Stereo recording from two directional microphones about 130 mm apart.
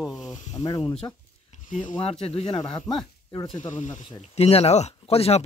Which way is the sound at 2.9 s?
Centre (ahead or behind).